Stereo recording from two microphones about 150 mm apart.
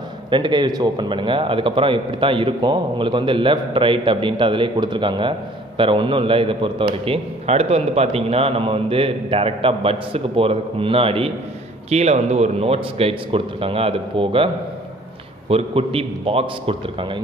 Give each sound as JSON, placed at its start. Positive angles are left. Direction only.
{"t": 0.3, "sound": "a man's voice", "side_deg": -30}